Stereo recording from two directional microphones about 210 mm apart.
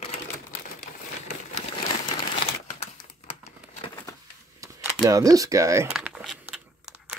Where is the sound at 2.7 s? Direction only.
35° left (ahead or behind).